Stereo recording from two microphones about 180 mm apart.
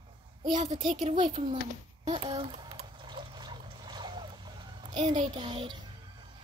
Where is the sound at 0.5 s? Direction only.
35° right (ahead or behind).